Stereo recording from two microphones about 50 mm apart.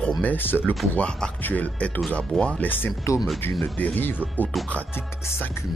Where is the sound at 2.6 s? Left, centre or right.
Left.